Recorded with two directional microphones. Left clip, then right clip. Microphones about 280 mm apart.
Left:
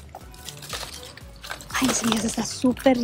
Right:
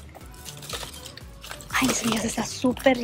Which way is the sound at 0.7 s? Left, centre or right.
Centre.